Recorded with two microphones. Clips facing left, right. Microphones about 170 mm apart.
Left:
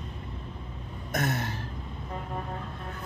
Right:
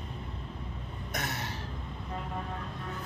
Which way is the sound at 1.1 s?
50° left (ahead or behind).